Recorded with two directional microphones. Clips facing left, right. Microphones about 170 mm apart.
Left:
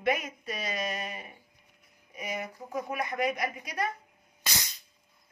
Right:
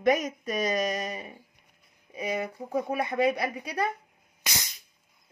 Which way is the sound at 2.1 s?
30° right (ahead or behind).